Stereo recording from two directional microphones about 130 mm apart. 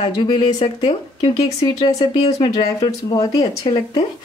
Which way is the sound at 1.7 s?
30° left (ahead or behind).